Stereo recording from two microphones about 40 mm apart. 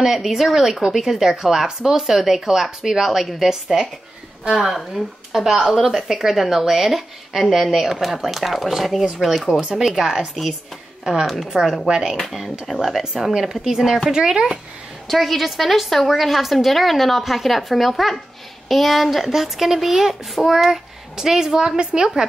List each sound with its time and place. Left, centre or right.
0.0 s speech: centre
11.5 s speech: centre
12.2 s speech: centre
12.8 s speech: centre
15.0 s speech: centre